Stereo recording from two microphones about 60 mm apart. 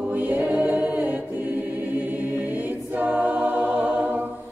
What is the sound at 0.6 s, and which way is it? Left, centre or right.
A capella, right.